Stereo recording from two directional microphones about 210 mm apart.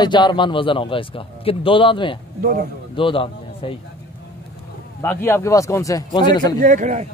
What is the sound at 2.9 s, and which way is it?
Speech, 25° left (ahead or behind).